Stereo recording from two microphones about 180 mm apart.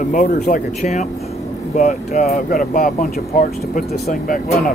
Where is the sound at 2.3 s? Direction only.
55° left (ahead or behind).